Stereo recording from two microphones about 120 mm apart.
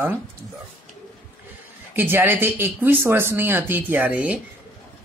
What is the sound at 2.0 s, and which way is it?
Speech, 15° right (ahead or behind).